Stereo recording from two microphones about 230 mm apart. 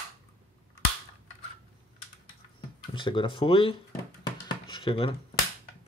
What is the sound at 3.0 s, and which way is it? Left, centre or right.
Speech, left.